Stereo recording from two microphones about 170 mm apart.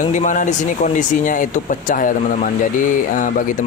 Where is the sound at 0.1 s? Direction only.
50° left (ahead or behind).